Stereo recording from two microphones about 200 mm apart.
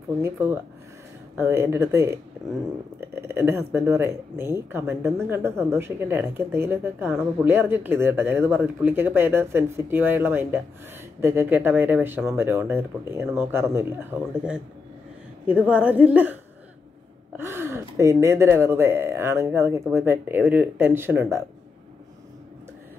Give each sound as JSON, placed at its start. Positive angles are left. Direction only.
{"t": 0.2, "sound": "speech", "side_deg": -10}
{"t": 17.4, "sound": "speech", "side_deg": -15}